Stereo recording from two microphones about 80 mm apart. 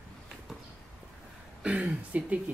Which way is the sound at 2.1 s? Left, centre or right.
Centre.